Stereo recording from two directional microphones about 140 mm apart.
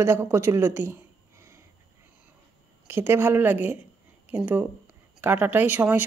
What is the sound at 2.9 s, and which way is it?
Speech, 15° right (ahead or behind).